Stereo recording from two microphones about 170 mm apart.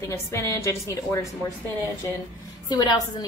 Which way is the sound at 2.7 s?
25° left (ahead or behind).